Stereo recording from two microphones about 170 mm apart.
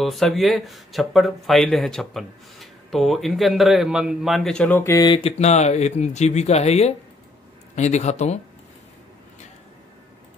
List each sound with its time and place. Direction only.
0.0 s speech: centre (ahead or behind)
5.0 s speech: 30° left (ahead or behind)
5.4 s a man's voice: 40° left (ahead or behind)